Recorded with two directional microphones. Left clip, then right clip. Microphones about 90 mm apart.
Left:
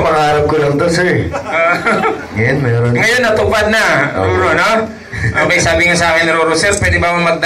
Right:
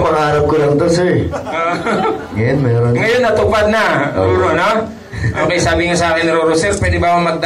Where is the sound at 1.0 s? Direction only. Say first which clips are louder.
Left 1 dB; 5° right (ahead or behind).